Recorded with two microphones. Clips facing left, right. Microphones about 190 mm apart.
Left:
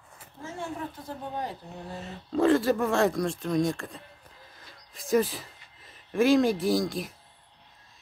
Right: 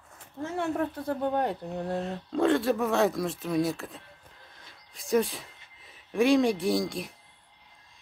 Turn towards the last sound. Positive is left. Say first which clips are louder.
# left 1 dB
turn(degrees=0)  # may be behind; listen again after turning